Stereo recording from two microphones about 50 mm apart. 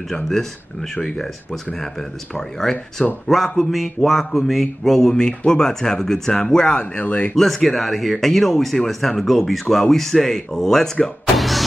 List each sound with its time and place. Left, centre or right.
0.1 s speech: centre
7.0 s speech: left
7.3 s speech: centre